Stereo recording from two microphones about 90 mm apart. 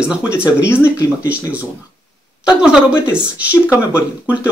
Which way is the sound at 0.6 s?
30° left (ahead or behind).